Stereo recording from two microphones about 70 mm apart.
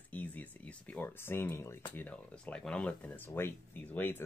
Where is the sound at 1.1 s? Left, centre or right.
Left.